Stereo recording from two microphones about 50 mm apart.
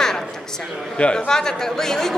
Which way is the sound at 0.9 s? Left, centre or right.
Left.